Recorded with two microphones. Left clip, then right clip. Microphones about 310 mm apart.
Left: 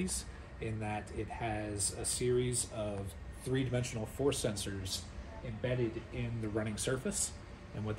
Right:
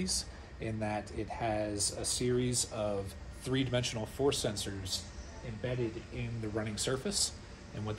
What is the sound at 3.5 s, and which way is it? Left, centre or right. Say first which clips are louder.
Speech: right 3 dB; centre.